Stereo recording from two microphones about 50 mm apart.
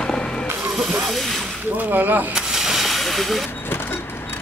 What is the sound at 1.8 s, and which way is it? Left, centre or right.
Speech, right.